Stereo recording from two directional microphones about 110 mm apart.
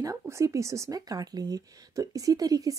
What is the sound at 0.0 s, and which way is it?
Speech, 30° right (ahead or behind).